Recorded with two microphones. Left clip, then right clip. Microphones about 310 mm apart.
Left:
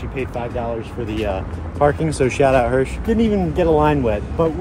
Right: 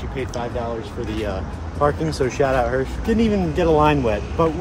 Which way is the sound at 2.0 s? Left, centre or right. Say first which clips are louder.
Left 4 dB; left.